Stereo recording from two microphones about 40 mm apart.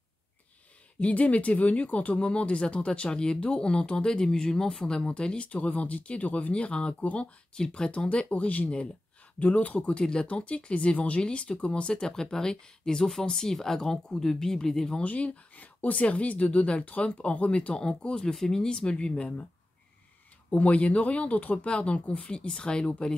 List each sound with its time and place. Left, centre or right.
0.9 s speech: left
5.5 s speech: left
6.5 s speech: left
7.0 s speech: left
7.5 s speech: left
9.8 s speech: left
15.0 s speech: left
20.5 s speech: left
22.5 s speech: centre